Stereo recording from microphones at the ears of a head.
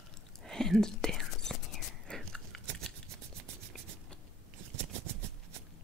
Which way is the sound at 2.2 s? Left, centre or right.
Right.